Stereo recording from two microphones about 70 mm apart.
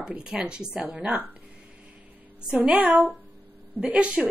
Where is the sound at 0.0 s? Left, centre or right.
Centre.